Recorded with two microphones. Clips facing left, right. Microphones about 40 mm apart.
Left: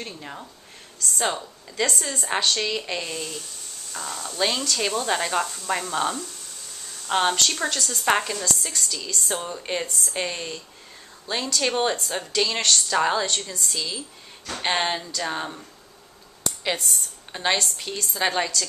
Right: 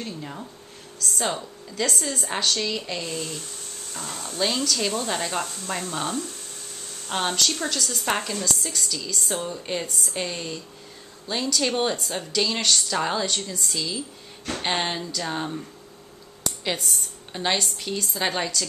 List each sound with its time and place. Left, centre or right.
0.0 s speech: centre
0.9 s a woman's voice: centre
7.7 s speech: centre
8.0 s a woman's voice: centre
8.6 s speech: centre
16.6 s a woman's voice: centre